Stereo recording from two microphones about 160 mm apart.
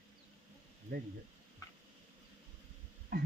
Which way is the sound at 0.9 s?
65° right (ahead or behind).